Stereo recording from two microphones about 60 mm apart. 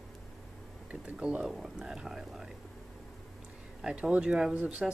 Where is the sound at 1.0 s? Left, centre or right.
Right.